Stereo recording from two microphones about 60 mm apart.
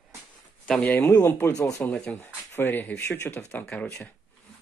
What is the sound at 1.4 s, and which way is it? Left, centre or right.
Speech, left.